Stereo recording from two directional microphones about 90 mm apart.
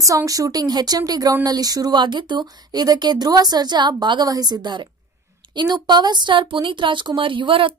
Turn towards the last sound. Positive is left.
turn(degrees=-75)  # may be behind; listen again after turning